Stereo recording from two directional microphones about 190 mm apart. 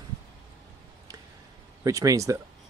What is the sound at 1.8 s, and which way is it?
Speech, 15° right (ahead or behind).